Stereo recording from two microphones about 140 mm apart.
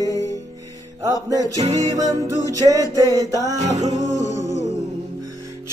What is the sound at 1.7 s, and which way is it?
Music, 25° right (ahead or behind).